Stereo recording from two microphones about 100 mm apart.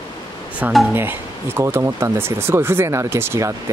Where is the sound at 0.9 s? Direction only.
20° right (ahead or behind).